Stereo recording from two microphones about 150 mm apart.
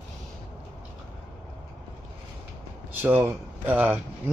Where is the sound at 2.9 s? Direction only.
15° right (ahead or behind).